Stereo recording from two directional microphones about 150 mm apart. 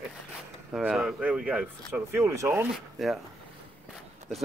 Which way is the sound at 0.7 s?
5° right (ahead or behind).